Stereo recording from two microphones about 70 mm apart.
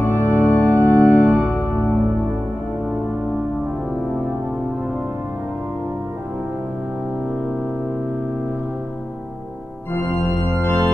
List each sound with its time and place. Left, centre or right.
0.0 s organ: left
1.5 s music: centre
9.9 s organ: left